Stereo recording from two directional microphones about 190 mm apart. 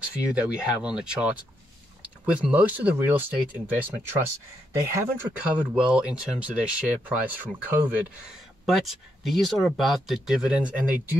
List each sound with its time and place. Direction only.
0.1 s speech: 5° right (ahead or behind)
2.3 s speech: 10° right (ahead or behind)